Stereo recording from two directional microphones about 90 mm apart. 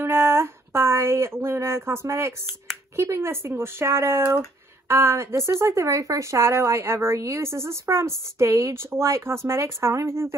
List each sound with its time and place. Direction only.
0.0 s speech: 30° right (ahead or behind)